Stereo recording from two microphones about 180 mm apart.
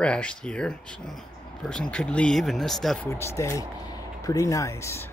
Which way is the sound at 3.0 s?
15° left (ahead or behind).